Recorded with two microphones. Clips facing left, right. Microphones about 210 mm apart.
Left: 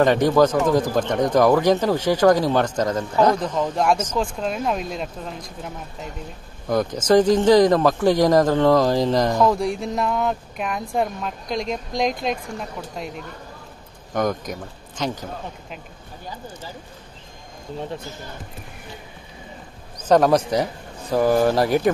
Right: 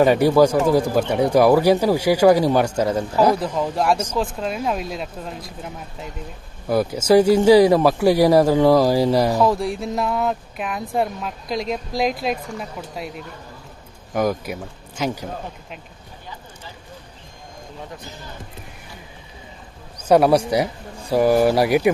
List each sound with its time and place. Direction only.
0.0 s speech: 10° right (ahead or behind)
14.1 s speech: 5° right (ahead or behind)
20.1 s speech: 10° right (ahead or behind)